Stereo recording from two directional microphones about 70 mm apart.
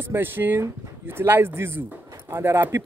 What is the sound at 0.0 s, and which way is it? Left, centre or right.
Speech, right.